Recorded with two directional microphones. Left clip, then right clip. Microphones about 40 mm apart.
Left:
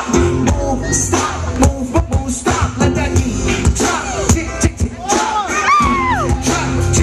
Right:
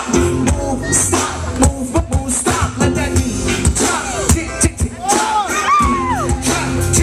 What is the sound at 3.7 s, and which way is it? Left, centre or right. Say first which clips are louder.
Music: even; left.